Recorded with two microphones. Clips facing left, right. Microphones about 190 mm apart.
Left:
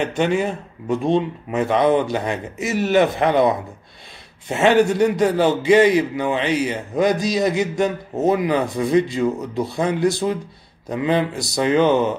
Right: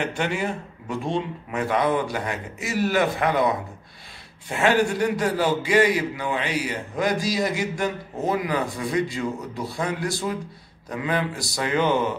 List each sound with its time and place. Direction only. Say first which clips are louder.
0.0 s a man's voice: left 6 dB; 20° left (ahead or behind)